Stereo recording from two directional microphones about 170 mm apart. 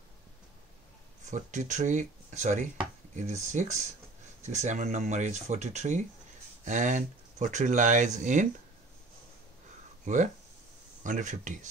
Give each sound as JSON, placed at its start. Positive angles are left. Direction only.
{"t": 1.2, "sound": "speech", "side_deg": -45}
{"t": 10.0, "sound": "speech", "side_deg": -45}